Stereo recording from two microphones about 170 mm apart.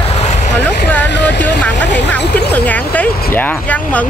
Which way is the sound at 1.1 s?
90° left.